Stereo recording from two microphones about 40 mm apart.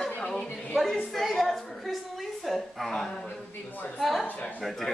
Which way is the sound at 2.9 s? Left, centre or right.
Centre.